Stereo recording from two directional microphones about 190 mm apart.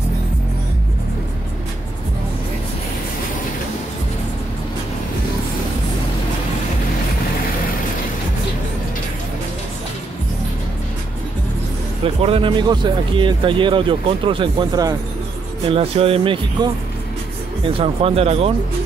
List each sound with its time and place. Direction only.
12.2 s speech: 30° right (ahead or behind)